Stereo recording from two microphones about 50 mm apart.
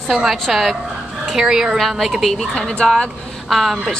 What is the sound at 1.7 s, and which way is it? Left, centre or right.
A woman's voice, centre.